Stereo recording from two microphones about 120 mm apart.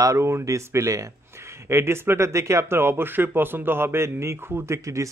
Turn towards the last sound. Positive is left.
turn(degrees=-25)  # may be behind; listen again after turning